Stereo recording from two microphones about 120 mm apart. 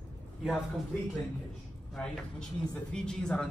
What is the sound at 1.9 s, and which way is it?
Speech, 5° left (ahead or behind).